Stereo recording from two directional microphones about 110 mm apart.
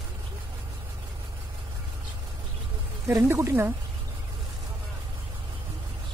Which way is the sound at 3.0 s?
30° right (ahead or behind).